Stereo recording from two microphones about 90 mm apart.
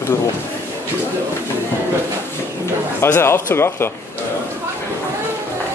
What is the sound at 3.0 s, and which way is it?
Speech, 25° left (ahead or behind).